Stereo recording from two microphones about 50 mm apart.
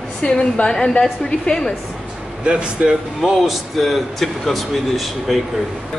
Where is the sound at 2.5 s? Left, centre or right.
Right.